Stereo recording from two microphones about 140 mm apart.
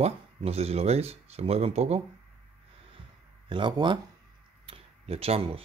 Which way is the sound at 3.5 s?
35° right (ahead or behind).